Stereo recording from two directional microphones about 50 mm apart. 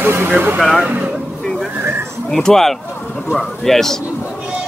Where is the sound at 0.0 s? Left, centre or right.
Right.